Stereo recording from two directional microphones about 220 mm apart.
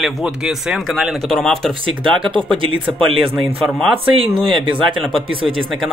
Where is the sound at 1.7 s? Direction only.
20° right (ahead or behind).